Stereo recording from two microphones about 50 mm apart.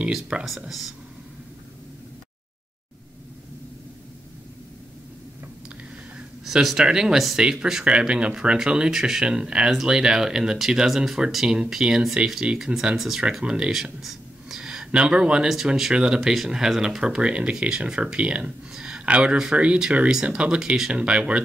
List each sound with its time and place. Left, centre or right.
0.0 s speech: centre
0.7 s speech: centre
6.4 s speech: centre
8.1 s speech: right
14.0 s a sound: centre
15.4 s speech: centre
15.9 s speech: centre
18.7 s a sound: centre
19.5 s speech: right